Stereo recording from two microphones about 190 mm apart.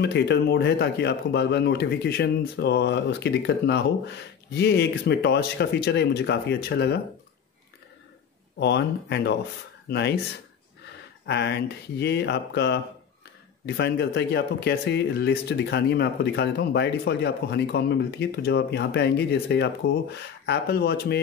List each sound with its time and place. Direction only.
0.0 s speech: 60° left (ahead or behind)
8.5 s speech: 65° left (ahead or behind)
11.2 s speech: 60° left (ahead or behind)